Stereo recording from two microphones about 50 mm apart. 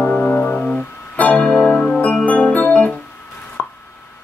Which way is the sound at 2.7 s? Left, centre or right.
Left.